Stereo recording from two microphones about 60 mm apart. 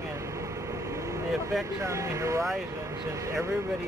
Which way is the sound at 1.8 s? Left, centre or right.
Right.